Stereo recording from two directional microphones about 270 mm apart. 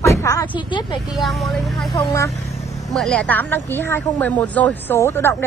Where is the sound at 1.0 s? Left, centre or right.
Centre.